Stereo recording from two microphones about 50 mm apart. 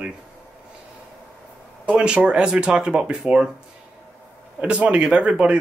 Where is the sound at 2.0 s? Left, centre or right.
Right.